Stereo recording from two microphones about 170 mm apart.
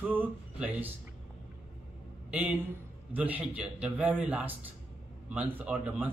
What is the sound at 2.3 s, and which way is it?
Speech, 10° right (ahead or behind).